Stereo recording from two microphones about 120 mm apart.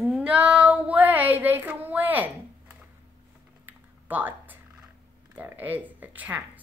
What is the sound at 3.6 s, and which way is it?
Typing, 15° right (ahead or behind).